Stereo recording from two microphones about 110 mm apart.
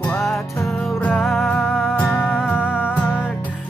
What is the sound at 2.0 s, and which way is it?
Music, 15° left (ahead or behind).